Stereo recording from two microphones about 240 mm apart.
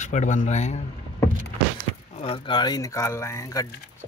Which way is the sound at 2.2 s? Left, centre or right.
Left.